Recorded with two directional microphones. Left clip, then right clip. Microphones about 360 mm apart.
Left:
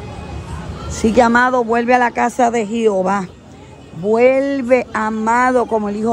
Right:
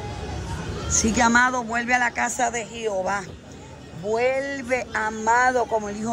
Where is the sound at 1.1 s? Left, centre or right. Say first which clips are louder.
Left 7 dB; centre.